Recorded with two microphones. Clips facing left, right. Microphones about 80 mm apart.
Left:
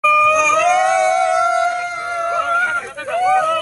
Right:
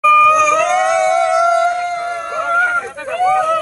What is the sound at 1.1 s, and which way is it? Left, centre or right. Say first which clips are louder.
Music: right 2 dB; centre.